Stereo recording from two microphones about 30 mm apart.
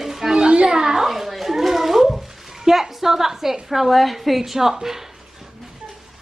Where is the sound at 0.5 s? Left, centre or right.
Right.